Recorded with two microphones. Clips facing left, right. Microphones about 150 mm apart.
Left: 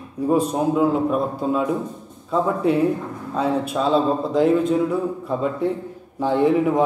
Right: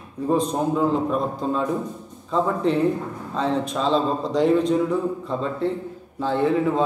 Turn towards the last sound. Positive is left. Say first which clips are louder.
# left 3 dB
turn(degrees=15)  # may be behind; listen again after turning